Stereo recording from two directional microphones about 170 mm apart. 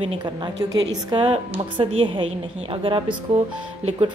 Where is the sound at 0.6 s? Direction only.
25° right (ahead or behind).